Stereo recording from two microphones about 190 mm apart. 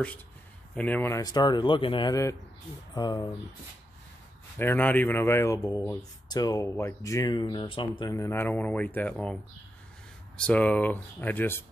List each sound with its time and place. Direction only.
0.7 s speech: 10° left (ahead or behind)
4.6 s speech: 10° left (ahead or behind)